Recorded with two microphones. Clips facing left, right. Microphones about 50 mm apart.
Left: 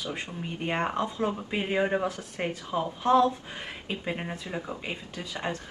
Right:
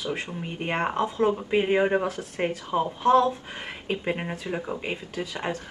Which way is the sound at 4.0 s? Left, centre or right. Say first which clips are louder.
Right 4 dB; centre.